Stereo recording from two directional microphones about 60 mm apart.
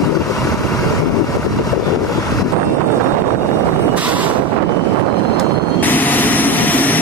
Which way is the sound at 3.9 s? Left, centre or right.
Right.